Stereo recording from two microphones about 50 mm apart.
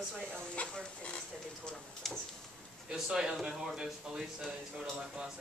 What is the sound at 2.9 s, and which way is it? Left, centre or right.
Speech, centre.